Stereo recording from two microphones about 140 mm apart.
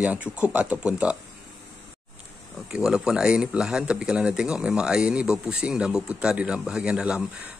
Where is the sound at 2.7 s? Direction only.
5° right (ahead or behind).